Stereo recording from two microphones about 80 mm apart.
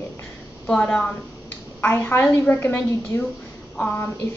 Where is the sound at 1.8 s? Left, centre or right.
Left.